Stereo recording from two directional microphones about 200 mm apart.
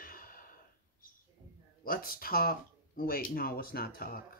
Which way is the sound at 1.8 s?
45° left (ahead or behind).